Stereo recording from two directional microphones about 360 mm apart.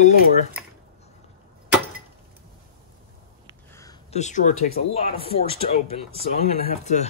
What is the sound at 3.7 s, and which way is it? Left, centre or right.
Speech, centre.